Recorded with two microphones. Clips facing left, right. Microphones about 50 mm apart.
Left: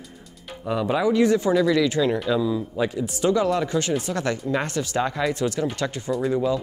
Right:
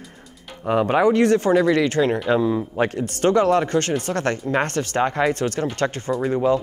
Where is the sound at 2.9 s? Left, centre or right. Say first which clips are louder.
Right 2 dB; right.